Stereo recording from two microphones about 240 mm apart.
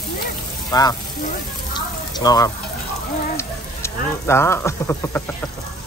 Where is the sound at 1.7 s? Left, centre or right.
Centre.